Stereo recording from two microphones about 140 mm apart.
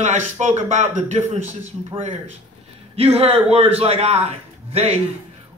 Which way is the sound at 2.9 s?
45° right (ahead or behind).